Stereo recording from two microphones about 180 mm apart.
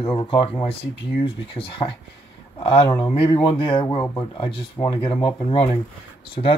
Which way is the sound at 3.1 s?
30° left (ahead or behind).